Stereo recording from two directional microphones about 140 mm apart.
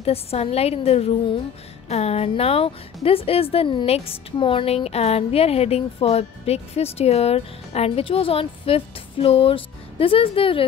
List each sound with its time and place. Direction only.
0.0 s a woman's voice: 45° left (ahead or behind)